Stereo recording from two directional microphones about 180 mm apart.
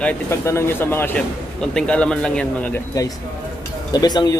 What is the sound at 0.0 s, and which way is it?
A man's voice, 15° left (ahead or behind).